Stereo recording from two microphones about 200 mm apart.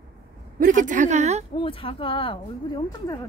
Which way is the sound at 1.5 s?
25° left (ahead or behind).